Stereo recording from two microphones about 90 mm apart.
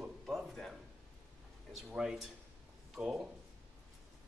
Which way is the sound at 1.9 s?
10° right (ahead or behind).